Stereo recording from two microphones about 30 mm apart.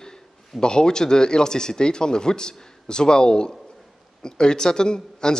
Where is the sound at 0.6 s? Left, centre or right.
Left.